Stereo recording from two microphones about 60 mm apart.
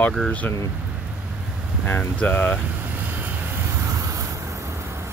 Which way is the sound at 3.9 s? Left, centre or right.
Right.